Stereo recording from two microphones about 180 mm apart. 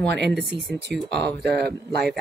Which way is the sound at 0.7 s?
70° right (ahead or behind).